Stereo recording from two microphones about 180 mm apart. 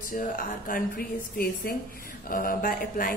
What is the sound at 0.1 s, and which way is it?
Speech, 50° left (ahead or behind).